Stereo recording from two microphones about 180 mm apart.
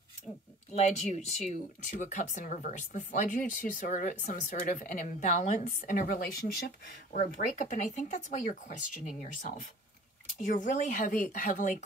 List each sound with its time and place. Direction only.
1.1 s speech: 40° left (ahead or behind)